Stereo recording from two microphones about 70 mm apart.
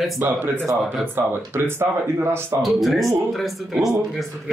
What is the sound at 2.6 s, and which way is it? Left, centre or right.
Speech, centre.